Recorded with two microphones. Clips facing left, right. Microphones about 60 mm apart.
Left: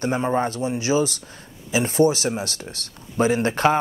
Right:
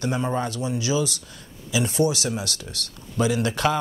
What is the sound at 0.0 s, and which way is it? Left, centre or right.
Speech, left.